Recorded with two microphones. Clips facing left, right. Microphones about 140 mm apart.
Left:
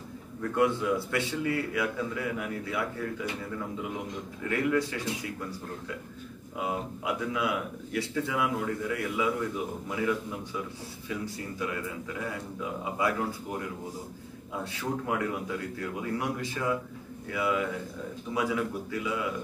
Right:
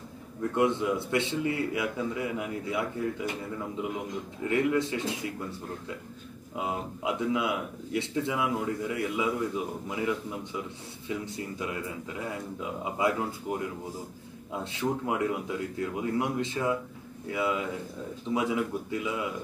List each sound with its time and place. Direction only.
0.4 s a man's voice: 20° right (ahead or behind)
4.4 s a man's voice: 25° right (ahead or behind)
6.5 s a man's voice: 20° right (ahead or behind)